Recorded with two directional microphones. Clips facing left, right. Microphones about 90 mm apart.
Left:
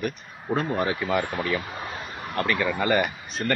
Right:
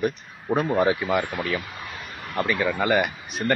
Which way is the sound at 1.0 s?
Centre (ahead or behind).